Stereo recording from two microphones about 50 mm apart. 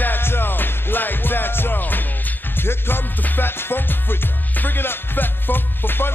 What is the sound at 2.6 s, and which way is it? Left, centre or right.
Music, left.